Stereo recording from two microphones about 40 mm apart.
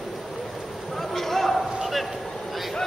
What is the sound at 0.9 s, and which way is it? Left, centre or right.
Basketball bounce, centre.